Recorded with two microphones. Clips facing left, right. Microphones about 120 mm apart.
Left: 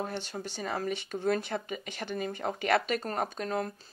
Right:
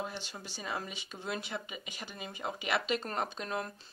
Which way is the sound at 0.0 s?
55° left (ahead or behind).